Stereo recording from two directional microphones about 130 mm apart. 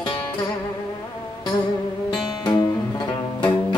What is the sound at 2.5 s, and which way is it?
Music, 35° left (ahead or behind).